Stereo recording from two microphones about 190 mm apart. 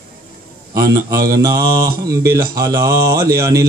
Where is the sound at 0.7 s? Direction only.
15° right (ahead or behind).